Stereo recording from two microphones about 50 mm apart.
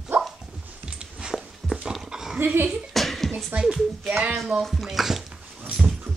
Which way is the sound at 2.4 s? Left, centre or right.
Right.